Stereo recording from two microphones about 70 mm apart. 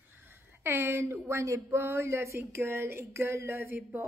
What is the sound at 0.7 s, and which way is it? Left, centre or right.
Speech, right.